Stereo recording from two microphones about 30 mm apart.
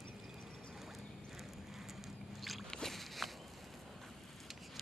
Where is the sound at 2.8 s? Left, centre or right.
Centre.